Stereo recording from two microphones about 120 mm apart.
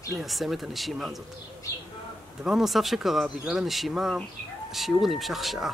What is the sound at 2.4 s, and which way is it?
Speech, 5° right (ahead or behind).